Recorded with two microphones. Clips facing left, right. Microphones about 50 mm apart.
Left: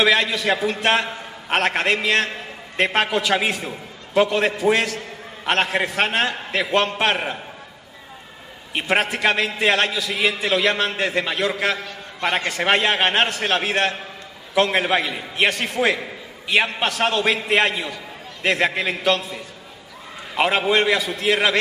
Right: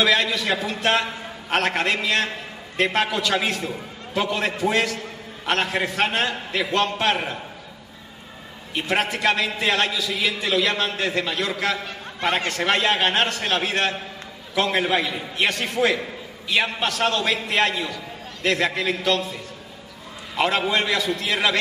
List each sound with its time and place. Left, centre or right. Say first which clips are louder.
0.0 s a man's voice: left 2 dB; centre
8.7 s a man's voice: left 2 dB; left
20.3 s a man's voice: left 3 dB; centre